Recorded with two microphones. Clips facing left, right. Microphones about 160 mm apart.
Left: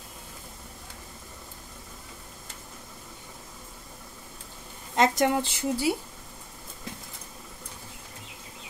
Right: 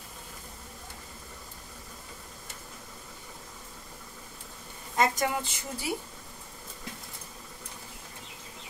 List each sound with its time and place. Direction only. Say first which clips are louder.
4.9 s speech: left 4 dB; 70° left (ahead or behind)